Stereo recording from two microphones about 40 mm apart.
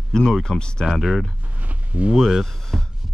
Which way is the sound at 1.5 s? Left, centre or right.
Right.